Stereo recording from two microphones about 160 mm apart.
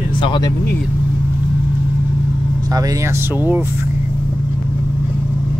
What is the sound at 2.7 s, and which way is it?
Speech, 20° right (ahead or behind).